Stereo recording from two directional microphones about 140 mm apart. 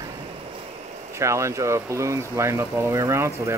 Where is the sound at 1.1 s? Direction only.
20° right (ahead or behind).